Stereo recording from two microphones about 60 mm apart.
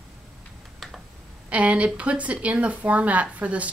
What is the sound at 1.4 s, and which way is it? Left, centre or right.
Speech, right.